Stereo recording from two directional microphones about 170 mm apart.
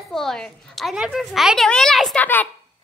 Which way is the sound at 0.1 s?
Centre (ahead or behind).